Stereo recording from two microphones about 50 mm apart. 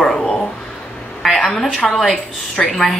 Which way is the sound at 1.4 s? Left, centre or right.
Centre.